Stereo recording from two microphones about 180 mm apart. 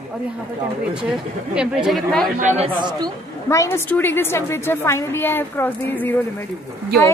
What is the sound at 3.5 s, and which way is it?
A woman's voice, 15° left (ahead or behind).